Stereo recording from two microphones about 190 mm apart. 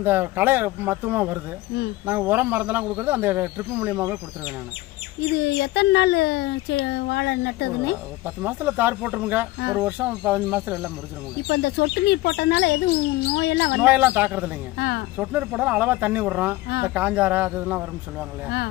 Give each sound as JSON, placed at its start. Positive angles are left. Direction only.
{"t": 0.0, "sound": "speech", "side_deg": -10}
{"t": 5.3, "sound": "speech", "side_deg": 60}
{"t": 8.4, "sound": "speech", "side_deg": -10}
{"t": 11.4, "sound": "speech", "side_deg": 60}
{"t": 13.7, "sound": "speech", "side_deg": -10}
{"t": 14.8, "sound": "speech", "side_deg": 60}
{"t": 15.1, "sound": "speech", "side_deg": -5}